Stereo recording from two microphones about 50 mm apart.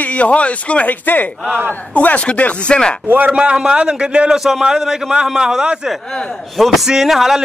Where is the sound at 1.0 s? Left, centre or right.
Left.